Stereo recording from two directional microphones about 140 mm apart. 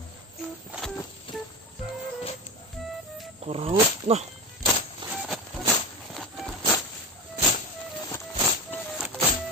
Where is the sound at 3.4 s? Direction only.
45° right (ahead or behind).